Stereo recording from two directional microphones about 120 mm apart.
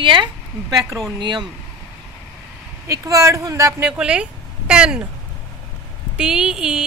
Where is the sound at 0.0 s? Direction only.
40° right (ahead or behind).